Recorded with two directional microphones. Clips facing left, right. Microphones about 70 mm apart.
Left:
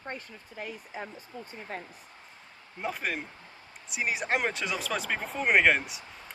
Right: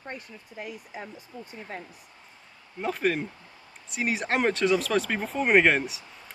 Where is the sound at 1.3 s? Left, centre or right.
Left.